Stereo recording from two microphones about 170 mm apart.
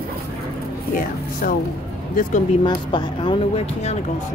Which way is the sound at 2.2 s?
50° left (ahead or behind).